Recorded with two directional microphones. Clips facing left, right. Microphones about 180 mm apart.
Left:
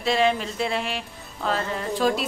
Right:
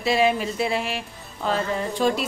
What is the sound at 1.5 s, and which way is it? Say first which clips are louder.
Music: right 2 dB; centre (ahead or behind).